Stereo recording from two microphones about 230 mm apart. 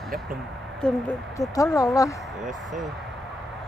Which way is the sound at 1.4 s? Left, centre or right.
Centre.